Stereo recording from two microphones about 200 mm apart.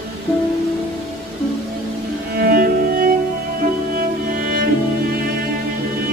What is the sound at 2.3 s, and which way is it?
Music, 50° right (ahead or behind).